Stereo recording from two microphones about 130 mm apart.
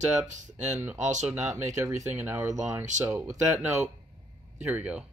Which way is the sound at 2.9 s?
70° right (ahead or behind).